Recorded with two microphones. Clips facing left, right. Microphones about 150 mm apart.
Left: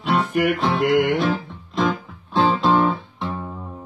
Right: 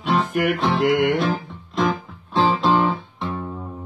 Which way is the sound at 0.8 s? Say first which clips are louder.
Left 1 dB; 45° left (ahead or behind).